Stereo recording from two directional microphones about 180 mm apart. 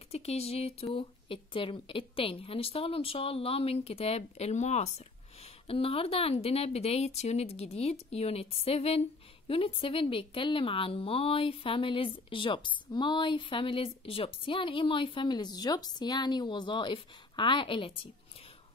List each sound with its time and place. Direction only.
0.1 s a woman's voice: 35° left (ahead or behind)